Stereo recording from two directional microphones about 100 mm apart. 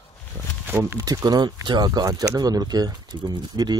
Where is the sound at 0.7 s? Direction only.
25° right (ahead or behind).